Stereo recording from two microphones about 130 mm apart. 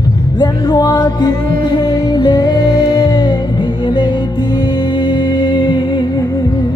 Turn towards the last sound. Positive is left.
turn(degrees=35)  # may be behind; listen again after turning